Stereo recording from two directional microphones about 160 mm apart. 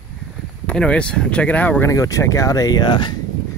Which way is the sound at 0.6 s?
5° left (ahead or behind).